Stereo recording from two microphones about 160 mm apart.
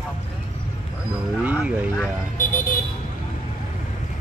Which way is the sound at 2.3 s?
60° left (ahead or behind).